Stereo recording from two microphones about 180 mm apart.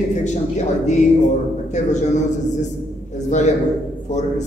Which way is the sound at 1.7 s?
40° left (ahead or behind).